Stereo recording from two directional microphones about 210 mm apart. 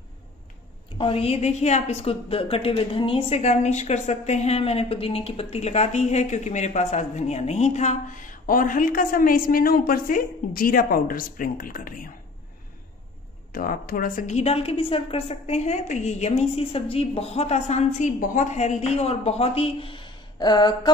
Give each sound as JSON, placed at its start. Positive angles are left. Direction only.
{"t": 0.9, "sound": "a woman's voice", "side_deg": 25}
{"t": 13.5, "sound": "a woman's voice", "side_deg": 45}